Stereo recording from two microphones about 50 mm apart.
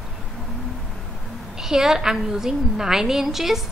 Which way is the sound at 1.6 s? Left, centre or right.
Centre.